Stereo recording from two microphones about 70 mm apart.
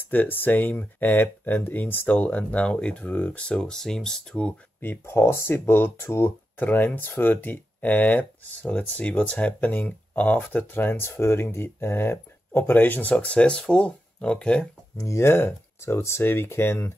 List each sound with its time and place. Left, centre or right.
0.0 s speech: left
3.4 s speech: centre
4.8 s speech: left; by 14.7 s centre
15.0 s speech: left